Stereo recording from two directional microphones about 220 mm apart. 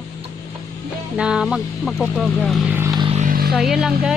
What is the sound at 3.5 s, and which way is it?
Speech, centre (ahead or behind).